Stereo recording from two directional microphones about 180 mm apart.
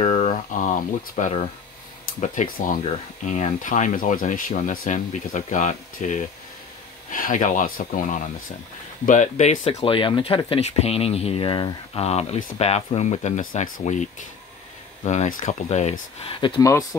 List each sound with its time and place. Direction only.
0.0 s a sound: 40° left (ahead or behind)
2.0 s speech: 45° left (ahead or behind)
9.8 s speech: 30° left (ahead or behind)
15.0 s speech: 45° left (ahead or behind)
16.3 s speech: 25° left (ahead or behind)